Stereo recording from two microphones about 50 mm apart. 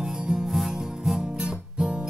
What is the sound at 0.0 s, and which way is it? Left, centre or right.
Music, centre.